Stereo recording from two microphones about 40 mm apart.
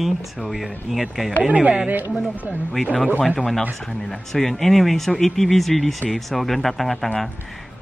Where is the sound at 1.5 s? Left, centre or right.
Right.